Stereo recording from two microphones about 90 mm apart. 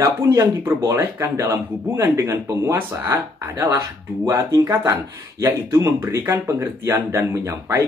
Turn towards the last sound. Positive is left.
turn(degrees=-30)  # may be behind; listen again after turning